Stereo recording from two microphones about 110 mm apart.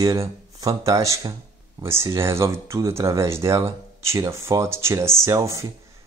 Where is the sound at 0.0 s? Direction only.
30° right (ahead or behind).